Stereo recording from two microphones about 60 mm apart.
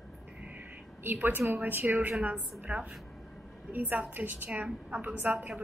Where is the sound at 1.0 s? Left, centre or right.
Right.